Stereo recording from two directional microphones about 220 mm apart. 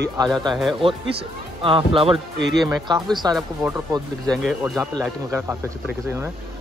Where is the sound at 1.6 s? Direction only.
25° right (ahead or behind).